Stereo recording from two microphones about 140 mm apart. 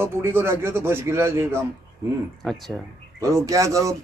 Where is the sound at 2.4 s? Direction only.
Centre (ahead or behind).